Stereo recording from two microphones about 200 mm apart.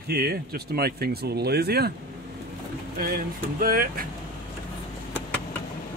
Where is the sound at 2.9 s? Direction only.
45° right (ahead or behind).